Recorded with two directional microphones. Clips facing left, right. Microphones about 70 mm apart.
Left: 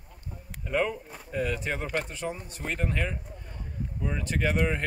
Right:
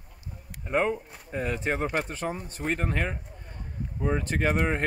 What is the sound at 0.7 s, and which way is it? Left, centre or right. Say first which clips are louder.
Speech: right 2 dB; right.